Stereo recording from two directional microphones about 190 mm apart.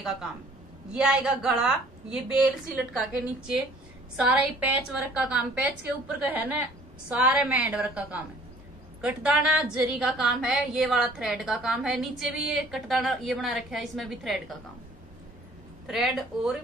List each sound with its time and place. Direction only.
0.9 s a woman's voice: 5° right (ahead or behind)
15.9 s a woman's voice: centre (ahead or behind)